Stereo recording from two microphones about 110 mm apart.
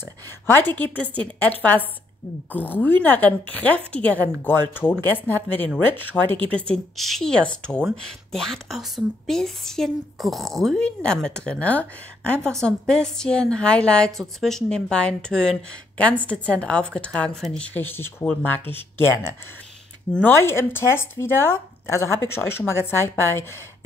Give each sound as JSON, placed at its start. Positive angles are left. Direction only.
{"t": 0.5, "sound": "a woman's voice", "side_deg": 20}
{"t": 2.5, "sound": "a woman's voice", "side_deg": 15}
{"t": 7.0, "sound": "a woman's voice", "side_deg": 5}
{"t": 17.7, "sound": "a woman's voice", "side_deg": 20}
{"t": 20.1, "sound": "a woman's voice", "side_deg": 10}
{"t": 20.3, "sound": "speech", "side_deg": 20}